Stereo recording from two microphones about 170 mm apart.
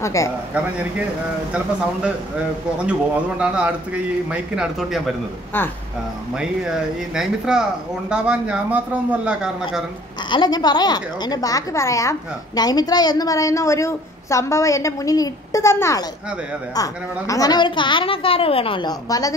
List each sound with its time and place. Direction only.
0.0 s a woman's voice: 20° left (ahead or behind)
2.8 s a man's voice: 5° right (ahead or behind)
7.2 s a man's voice: 5° right (ahead or behind)
10.3 s a woman's voice: 25° left (ahead or behind)